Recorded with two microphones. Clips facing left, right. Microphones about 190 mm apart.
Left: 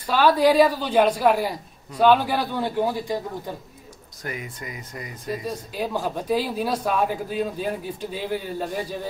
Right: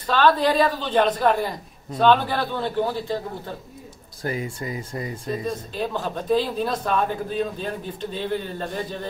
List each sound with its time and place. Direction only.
0.0 s speech: 10° left (ahead or behind)
4.2 s speech: 30° right (ahead or behind)
5.4 s speech: 10° left (ahead or behind)